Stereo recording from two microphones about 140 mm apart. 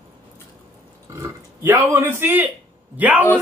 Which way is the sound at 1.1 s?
20° right (ahead or behind).